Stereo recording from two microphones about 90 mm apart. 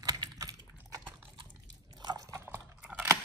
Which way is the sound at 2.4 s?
20° right (ahead or behind).